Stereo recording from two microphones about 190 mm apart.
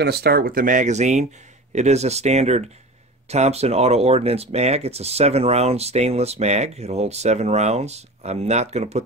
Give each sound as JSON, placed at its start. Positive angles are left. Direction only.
{"t": 0.0, "sound": "speech", "side_deg": -55}